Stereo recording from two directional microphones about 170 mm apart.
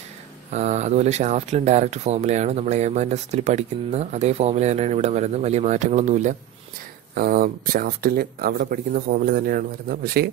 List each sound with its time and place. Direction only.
0.5 s speech: 40° right (ahead or behind)
7.2 s speech: 60° right (ahead or behind)